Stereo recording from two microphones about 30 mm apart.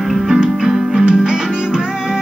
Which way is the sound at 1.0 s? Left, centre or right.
Right.